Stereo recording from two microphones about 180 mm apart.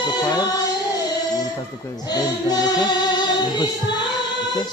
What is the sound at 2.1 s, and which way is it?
Music, 20° left (ahead or behind).